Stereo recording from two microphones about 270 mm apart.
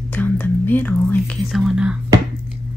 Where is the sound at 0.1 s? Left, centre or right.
Centre.